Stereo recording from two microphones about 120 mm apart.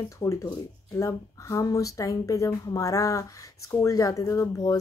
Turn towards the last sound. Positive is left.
turn(degrees=30)  # may be behind; listen again after turning